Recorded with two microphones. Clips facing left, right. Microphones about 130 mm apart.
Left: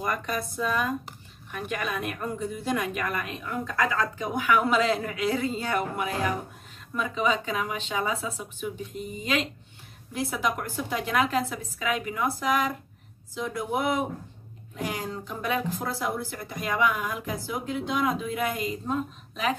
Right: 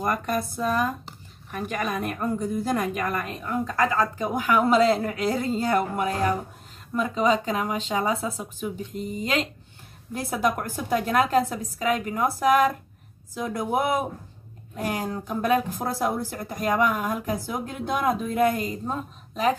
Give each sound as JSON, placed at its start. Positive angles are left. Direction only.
{"t": 0.0, "sound": "a woman's voice", "side_deg": -45}